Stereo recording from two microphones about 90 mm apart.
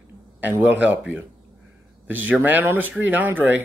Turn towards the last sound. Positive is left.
turn(degrees=-20)  # may be behind; listen again after turning